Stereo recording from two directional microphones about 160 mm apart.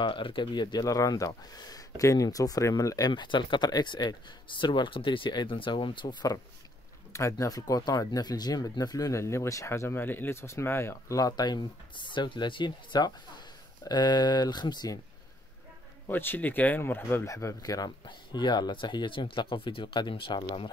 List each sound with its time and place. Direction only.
0.0 s speech: 30° left (ahead or behind)
16.1 s speech: 10° left (ahead or behind); by 20.4 s 30° left (ahead or behind)